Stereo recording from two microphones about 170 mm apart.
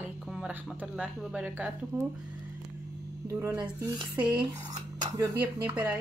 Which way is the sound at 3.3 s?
10° right (ahead or behind).